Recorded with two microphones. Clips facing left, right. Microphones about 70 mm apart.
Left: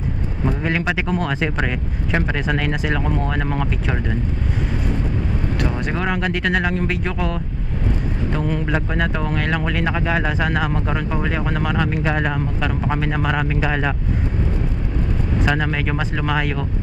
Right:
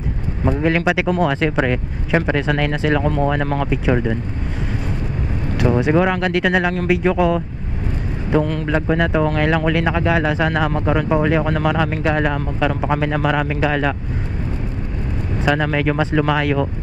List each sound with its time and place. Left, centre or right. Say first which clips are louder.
0.5 s speech: right 5 dB; centre
2.3 s speech: right 3 dB; centre
3.7 s speech: right 7 dB; centre
5.8 s speech: right 6 dB; centre
8.5 s a man's voice: right 3 dB; centre
15.4 s speech: right 5 dB; centre